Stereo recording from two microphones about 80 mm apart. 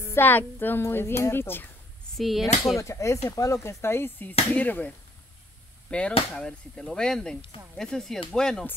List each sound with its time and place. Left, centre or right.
0.0 s speech: left
2.1 s speech: centre
2.8 s speech: left; by 8.6 s centre